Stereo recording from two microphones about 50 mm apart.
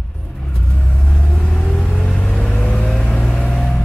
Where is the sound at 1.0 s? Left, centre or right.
Centre.